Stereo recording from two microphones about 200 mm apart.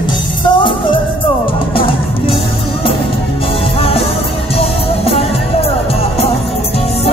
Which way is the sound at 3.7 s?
30° left (ahead or behind).